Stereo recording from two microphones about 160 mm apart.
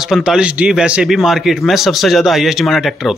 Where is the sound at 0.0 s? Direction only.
5° right (ahead or behind).